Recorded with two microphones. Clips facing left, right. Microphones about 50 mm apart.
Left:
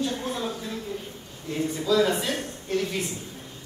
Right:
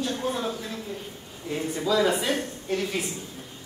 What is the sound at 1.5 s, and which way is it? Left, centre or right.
A man's voice, centre.